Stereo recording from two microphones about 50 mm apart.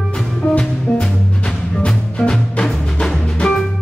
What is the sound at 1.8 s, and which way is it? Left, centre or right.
Music, centre.